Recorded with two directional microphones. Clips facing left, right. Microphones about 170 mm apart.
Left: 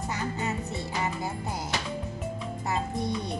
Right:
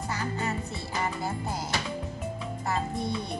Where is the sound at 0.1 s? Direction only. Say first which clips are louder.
Even; 20° left (ahead or behind).